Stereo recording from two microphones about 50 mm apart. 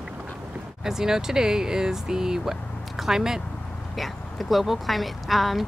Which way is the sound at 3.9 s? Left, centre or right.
Centre.